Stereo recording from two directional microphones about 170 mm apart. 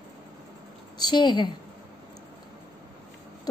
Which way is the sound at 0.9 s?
25° left (ahead or behind).